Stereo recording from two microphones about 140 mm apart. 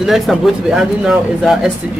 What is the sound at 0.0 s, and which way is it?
Speech, centre (ahead or behind).